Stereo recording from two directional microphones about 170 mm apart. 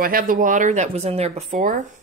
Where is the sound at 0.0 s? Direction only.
55° right (ahead or behind).